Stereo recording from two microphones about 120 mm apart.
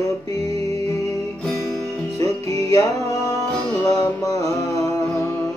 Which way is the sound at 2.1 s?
30° left (ahead or behind).